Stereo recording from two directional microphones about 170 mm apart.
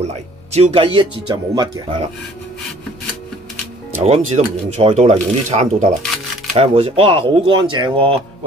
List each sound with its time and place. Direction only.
0.0 s speech: 40° right (ahead or behind)
4.0 s speech: 40° right (ahead or behind)